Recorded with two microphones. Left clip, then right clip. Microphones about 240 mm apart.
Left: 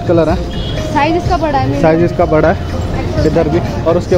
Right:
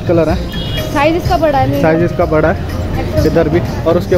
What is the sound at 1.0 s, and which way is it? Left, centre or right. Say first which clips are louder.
Speech: right 1 dB; right.